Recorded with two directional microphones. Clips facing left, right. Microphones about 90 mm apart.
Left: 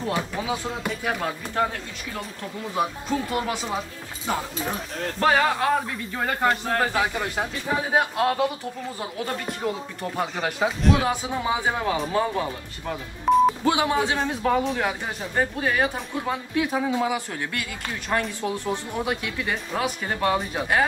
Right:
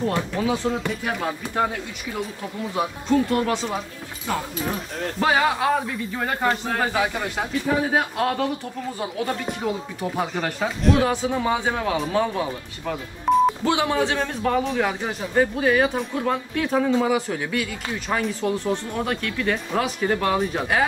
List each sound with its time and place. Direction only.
0.1 s speech: 5° left (ahead or behind)
2.7 s speech: 5° left (ahead or behind)
5.2 s speech: 5° right (ahead or behind)
7.9 s speech: 10° left (ahead or behind)
9.0 s speech: centre (ahead or behind)
13.7 s speech: 20° left (ahead or behind)
14.4 s speech: centre (ahead or behind)